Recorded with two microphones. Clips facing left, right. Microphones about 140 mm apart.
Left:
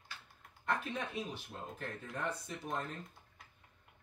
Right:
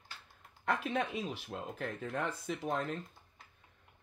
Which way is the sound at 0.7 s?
90° right.